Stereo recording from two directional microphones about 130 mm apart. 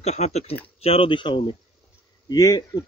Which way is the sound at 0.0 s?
55° left (ahead or behind).